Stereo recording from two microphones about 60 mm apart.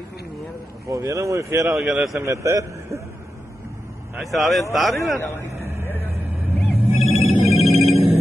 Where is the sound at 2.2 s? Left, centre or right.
Right.